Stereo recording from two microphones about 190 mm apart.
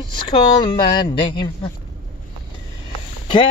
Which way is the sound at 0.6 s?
25° left (ahead or behind).